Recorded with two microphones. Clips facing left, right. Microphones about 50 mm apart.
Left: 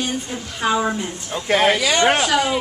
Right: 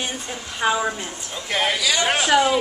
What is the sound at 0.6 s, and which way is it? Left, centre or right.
Speech, centre.